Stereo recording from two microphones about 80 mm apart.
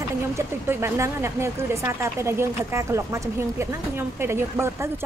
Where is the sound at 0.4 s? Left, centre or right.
Right.